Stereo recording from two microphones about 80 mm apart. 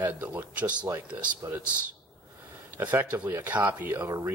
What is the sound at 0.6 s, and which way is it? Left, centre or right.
Speech, centre.